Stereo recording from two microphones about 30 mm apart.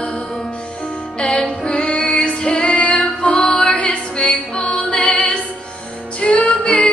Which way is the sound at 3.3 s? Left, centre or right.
Left.